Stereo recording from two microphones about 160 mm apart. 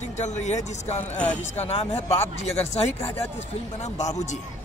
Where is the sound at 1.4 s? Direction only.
40° left (ahead or behind).